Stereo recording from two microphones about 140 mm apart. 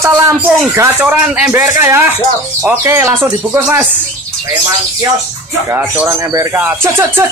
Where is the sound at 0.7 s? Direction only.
20° right (ahead or behind).